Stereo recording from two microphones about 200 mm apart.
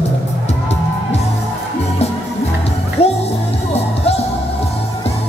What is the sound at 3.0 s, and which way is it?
Music, 30° left (ahead or behind).